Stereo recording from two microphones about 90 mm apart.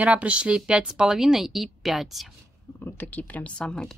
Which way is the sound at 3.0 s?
20° left (ahead or behind).